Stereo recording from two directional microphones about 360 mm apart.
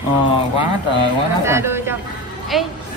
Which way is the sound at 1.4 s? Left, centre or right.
Centre.